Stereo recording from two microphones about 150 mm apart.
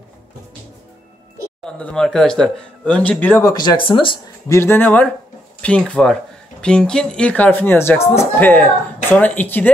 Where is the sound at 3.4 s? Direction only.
30° left (ahead or behind).